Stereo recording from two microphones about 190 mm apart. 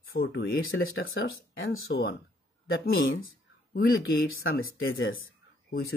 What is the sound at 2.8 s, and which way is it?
Speech, 55° left (ahead or behind).